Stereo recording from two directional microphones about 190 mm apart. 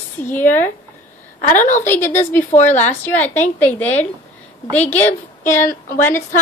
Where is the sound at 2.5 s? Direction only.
40° left (ahead or behind).